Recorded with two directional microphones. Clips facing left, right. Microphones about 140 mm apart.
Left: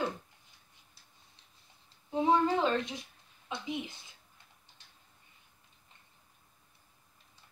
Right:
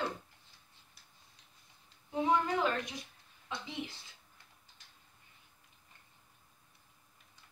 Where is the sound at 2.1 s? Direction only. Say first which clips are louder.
Left 4 dB; 25° left (ahead or behind).